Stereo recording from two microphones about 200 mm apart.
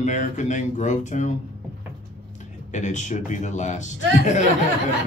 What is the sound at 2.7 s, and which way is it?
Speech, 35° left (ahead or behind).